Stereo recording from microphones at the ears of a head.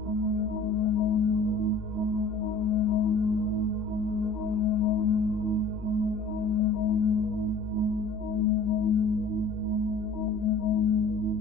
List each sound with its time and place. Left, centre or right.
0.4 s singing bowl: left
2.6 s singing bowl: left
4.6 s singing bowl: left
6.4 s music: left
8.4 s music: left
10.4 s singing bowl: left